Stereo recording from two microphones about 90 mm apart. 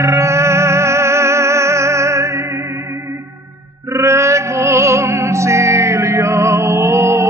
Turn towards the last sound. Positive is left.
turn(degrees=-30)  # may be behind; listen again after turning